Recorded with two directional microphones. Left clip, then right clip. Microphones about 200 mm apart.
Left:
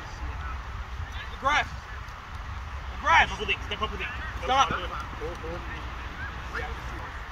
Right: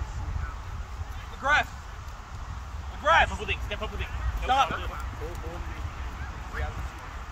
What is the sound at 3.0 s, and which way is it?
Vehicle, 10° right (ahead or behind).